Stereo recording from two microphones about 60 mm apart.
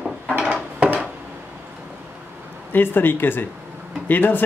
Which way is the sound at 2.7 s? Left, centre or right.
Left.